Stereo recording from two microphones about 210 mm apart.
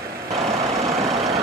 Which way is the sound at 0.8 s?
30° right (ahead or behind).